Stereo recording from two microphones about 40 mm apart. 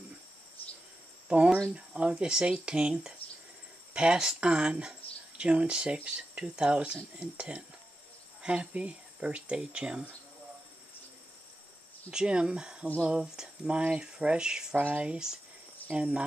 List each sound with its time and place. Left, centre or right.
1.3 s speech: right
12.1 s speech: centre
14.8 s speech: right
15.9 s speech: right